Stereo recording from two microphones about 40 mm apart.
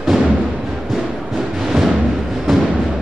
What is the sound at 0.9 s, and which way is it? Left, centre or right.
Music, centre.